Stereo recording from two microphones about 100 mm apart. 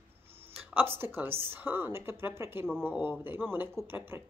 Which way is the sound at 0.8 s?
20° right (ahead or behind).